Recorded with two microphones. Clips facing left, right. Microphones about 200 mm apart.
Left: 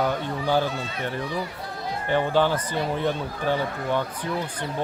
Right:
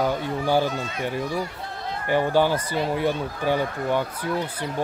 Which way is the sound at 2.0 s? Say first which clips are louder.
Right 1 dB; 10° right (ahead or behind).